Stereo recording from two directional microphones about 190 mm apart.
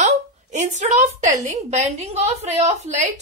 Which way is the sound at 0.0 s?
40° right (ahead or behind).